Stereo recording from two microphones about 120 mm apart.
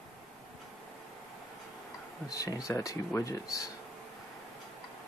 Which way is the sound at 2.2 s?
30° left (ahead or behind).